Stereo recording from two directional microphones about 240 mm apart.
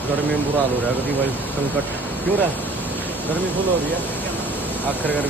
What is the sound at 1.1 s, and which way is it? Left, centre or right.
Speech, centre.